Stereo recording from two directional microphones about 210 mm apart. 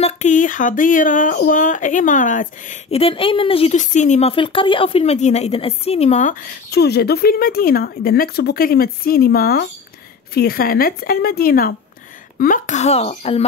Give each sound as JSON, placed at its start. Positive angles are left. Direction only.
{"t": 0.0, "sound": "speech", "side_deg": 35}
{"t": 6.7, "sound": "speech", "side_deg": 50}